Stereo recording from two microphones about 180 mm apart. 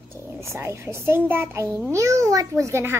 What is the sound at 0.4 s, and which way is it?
A woman's voice, 15° right (ahead or behind).